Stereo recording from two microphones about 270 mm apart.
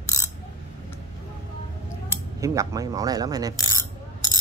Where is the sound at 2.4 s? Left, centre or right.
Centre.